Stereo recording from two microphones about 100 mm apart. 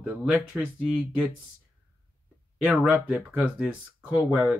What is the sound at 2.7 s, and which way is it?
Speech, 15° right (ahead or behind).